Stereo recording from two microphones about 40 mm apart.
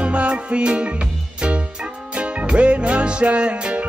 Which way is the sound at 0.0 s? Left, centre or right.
Right.